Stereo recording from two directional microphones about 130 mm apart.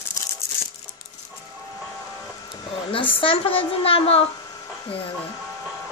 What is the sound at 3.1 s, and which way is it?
A woman's voice, 45° left (ahead or behind).